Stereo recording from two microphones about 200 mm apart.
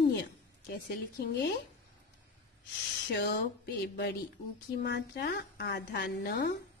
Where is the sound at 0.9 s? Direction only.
50° left (ahead or behind).